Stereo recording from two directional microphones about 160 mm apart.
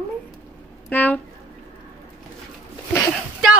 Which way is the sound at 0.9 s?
10° left (ahead or behind).